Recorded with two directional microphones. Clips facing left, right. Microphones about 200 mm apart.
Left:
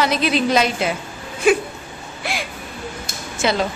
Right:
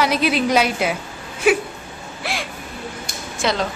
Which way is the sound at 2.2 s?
5° right (ahead or behind).